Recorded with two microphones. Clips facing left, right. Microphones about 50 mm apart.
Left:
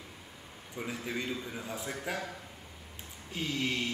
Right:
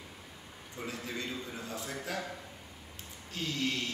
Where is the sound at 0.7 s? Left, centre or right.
Centre.